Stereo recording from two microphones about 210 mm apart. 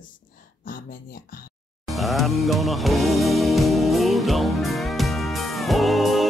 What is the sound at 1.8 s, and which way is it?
Music, centre (ahead or behind).